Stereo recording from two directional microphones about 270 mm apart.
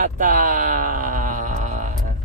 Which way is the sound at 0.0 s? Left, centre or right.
Right.